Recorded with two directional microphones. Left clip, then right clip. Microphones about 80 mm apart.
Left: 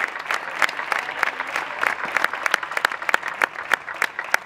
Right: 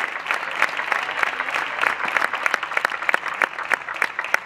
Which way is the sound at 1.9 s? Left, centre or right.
Left.